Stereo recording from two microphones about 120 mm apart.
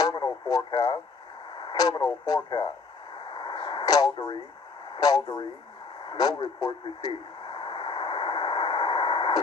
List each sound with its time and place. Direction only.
0.0 s radio: 35° left (ahead or behind)
2.2 s speech: 35° left (ahead or behind)
3.2 s arrow: 40° left (ahead or behind)
4.9 s speech: 35° left (ahead or behind)
7.1 s a sound: 45° left (ahead or behind)